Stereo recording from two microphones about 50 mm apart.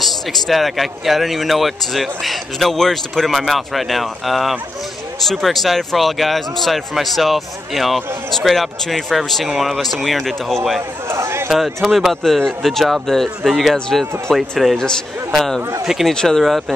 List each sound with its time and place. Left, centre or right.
0.0 s speech: centre
11.1 s speech: right
11.5 s speech: centre
13.4 s speech: centre
15.8 s speech: centre
16.1 s speech: centre